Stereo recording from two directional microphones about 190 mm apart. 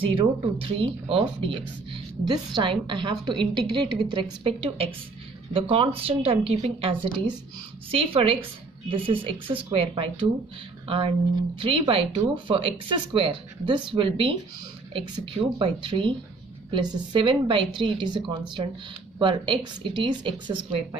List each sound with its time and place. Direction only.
0.0 s a woman's voice: 30° right (ahead or behind)
11.6 s a woman's voice: 30° right (ahead or behind)